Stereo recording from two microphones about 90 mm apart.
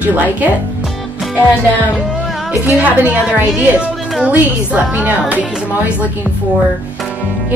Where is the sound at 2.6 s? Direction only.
15° right (ahead or behind).